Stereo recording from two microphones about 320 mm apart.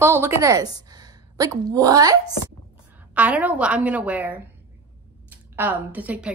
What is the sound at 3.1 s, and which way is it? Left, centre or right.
A woman's voice, centre.